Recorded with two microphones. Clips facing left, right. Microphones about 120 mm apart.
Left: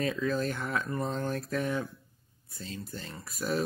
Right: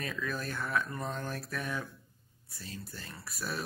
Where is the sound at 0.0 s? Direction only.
25° left (ahead or behind).